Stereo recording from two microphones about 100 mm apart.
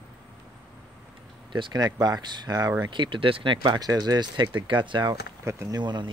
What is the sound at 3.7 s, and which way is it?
Speech, 45° right (ahead or behind).